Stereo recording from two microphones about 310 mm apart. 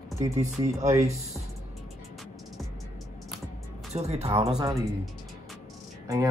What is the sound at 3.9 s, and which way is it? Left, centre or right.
Speech, centre.